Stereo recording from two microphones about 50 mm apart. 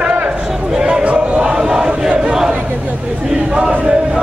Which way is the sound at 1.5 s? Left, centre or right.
Centre.